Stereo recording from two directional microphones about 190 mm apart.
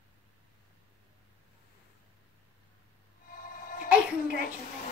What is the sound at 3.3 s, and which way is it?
Music, 50° left (ahead or behind).